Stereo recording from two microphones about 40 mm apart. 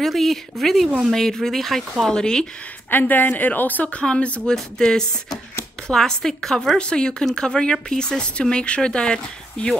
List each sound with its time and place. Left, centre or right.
0.0 s speech: centre
2.1 s speech: centre
2.9 s a woman's voice: left
3.9 s speech: left
4.6 s speech: centre
6.8 s speech: left